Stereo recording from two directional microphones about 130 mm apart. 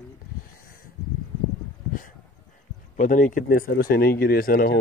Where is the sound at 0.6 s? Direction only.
90° left.